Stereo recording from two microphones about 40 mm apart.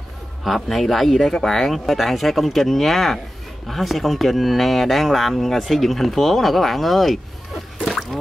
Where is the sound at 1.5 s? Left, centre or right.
Centre.